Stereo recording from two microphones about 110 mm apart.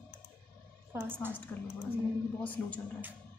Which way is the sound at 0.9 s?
20° right (ahead or behind).